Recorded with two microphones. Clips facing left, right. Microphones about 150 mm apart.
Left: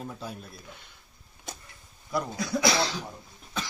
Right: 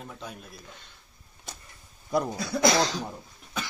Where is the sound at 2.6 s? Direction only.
45° right (ahead or behind).